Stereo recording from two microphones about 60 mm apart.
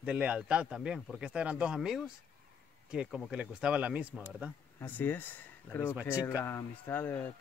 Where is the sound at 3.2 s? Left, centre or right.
Centre.